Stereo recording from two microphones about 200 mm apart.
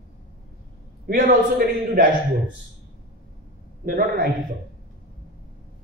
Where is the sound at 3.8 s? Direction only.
50° right (ahead or behind).